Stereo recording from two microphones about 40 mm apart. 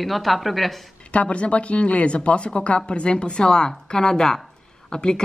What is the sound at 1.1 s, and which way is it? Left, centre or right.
A woman's voice, left.